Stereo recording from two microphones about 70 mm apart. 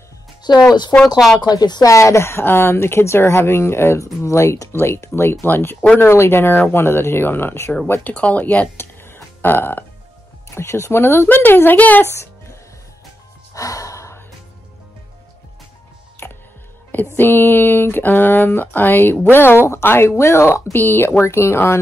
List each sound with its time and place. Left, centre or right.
0.4 s music: left
0.9 s a woman's voice: left
1.4 s a woman's voice: left
7.9 s speech: left
8.7 s burping: left
10.5 s a woman's voice: left
12.1 s music: left
13.5 s gasp: left
16.9 s a woman's voice: left